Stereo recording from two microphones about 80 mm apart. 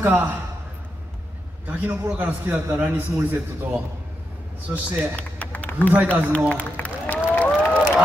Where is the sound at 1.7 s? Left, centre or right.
Centre.